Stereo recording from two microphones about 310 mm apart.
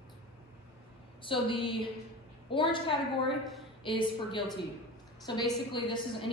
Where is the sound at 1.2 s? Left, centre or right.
Centre.